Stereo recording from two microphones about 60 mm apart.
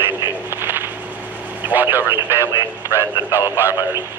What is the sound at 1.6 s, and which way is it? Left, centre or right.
Speech, right.